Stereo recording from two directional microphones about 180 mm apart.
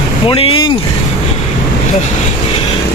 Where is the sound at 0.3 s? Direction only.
30° left (ahead or behind).